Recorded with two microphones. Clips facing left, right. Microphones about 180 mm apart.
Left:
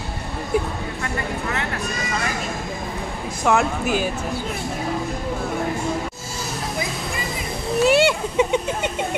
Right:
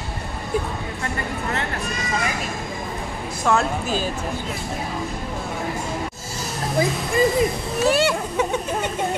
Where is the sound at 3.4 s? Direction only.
15° left (ahead or behind).